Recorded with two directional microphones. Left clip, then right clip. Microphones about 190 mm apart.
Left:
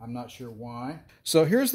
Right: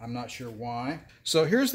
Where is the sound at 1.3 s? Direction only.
50° left (ahead or behind).